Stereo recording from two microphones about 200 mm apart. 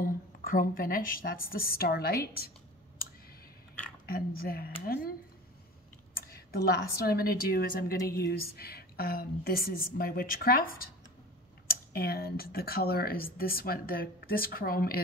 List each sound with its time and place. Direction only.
0.0 s a woman's voice: 45° left (ahead or behind)
4.0 s a woman's voice: 50° left (ahead or behind)
6.2 s a woman's voice: 50° left (ahead or behind)